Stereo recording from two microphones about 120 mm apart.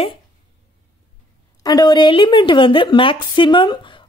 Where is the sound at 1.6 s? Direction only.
35° left (ahead or behind).